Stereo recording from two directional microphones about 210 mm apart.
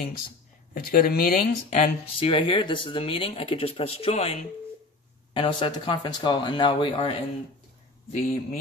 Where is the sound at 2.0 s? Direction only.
25° left (ahead or behind).